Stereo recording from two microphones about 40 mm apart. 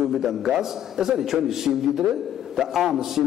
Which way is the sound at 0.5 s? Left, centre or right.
Centre.